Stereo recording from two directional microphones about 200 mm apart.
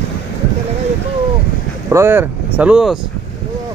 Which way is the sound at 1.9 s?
10° right (ahead or behind).